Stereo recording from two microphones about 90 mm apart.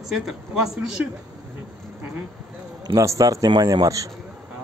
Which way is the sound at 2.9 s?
35° right (ahead or behind).